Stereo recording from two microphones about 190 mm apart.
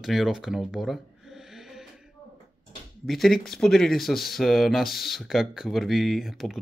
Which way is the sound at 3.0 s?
Centre (ahead or behind).